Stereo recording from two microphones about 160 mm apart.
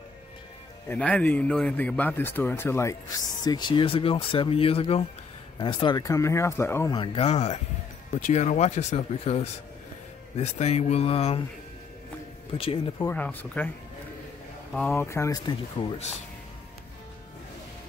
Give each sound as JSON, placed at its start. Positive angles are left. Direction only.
{"t": 0.8, "sound": "speech", "side_deg": 10}
{"t": 7.0, "sound": "speech", "side_deg": 40}
{"t": 12.5, "sound": "speech", "side_deg": 35}
{"t": 13.0, "sound": "speech", "side_deg": 10}
{"t": 14.7, "sound": "speech", "side_deg": 5}
{"t": 15.0, "sound": "speech", "side_deg": 15}
{"t": 15.8, "sound": "speech", "side_deg": 30}